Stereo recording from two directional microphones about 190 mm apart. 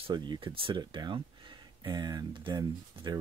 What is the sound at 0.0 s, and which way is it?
Speech, 25° right (ahead or behind).